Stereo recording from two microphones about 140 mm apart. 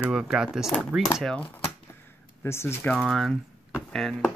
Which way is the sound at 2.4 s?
15° left (ahead or behind).